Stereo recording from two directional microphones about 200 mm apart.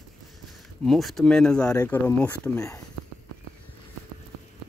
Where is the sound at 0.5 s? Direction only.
Centre (ahead or behind).